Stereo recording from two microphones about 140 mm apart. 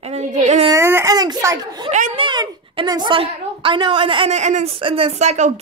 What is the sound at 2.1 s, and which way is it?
A woman's voice, 35° right (ahead or behind).